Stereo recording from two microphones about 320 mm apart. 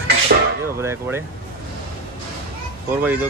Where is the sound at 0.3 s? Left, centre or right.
Right.